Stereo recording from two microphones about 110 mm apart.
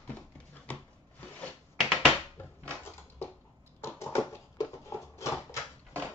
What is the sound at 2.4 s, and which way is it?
Crushing, 20° left (ahead or behind).